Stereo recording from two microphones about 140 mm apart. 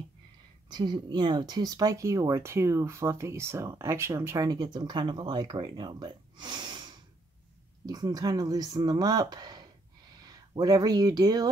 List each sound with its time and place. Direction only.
0.7 s speech: 30° right (ahead or behind)